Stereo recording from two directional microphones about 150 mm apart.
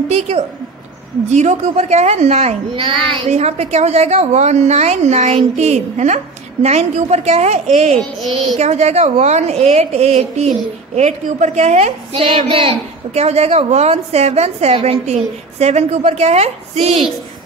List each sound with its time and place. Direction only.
0.1 s a woman's voice: 45° right (ahead or behind)